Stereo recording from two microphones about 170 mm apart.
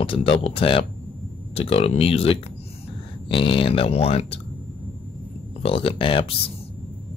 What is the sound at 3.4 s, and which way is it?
Speech, 35° left (ahead or behind).